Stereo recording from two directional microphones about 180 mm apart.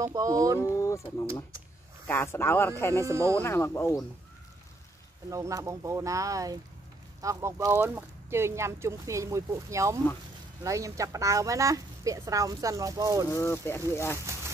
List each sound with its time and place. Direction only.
0.0 s speech: 20° right (ahead or behind)
0.6 s speech: 15° left (ahead or behind)
3.1 s speech: 15° right (ahead or behind)
3.3 s speech: 15° left (ahead or behind)
5.3 s speech: 15° right (ahead or behind)
13.3 s speech: 15° left (ahead or behind)